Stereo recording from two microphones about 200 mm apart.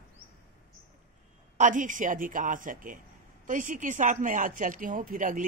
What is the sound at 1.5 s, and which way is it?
A man's voice, 40° right (ahead or behind).